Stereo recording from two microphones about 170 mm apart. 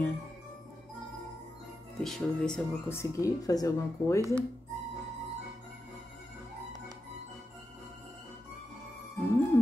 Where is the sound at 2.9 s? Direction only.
20° left (ahead or behind).